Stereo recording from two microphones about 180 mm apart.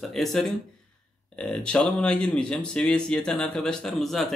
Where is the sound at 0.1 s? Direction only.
Centre (ahead or behind).